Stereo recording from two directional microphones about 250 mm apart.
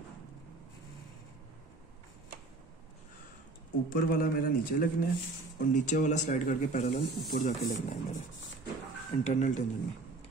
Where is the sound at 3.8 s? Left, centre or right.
Left.